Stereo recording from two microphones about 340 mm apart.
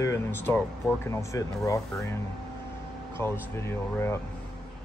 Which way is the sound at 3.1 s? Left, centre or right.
Centre.